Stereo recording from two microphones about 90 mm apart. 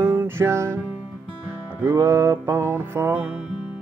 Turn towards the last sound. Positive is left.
turn(degrees=-20)  # may be behind; listen again after turning